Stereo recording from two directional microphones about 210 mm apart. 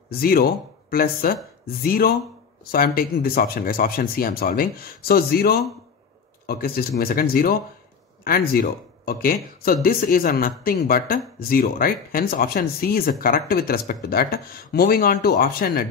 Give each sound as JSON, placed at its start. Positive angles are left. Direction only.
{"t": 0.2, "sound": "speech", "side_deg": 45}